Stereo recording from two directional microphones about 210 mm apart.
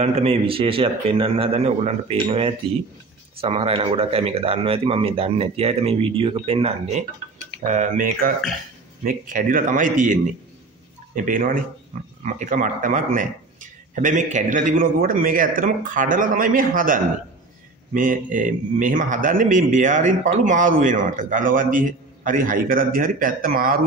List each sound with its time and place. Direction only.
0.0 s speech: 30° right (ahead or behind)
3.3 s a man's voice: 30° right (ahead or behind)
11.1 s a man's voice: 40° right (ahead or behind)